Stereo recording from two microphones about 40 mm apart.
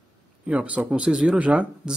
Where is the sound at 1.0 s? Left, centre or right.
Centre.